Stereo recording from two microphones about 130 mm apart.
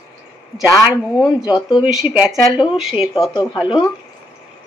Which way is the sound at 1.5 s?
35° left (ahead or behind).